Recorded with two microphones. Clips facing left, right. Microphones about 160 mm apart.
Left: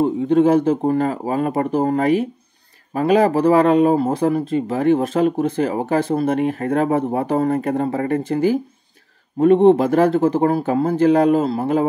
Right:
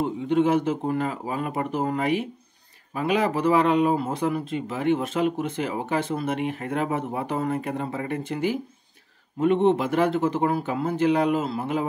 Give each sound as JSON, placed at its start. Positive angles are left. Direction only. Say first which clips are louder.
{"t": 0.0, "sound": "speech", "louder": "left 7 dB", "side_deg": 40}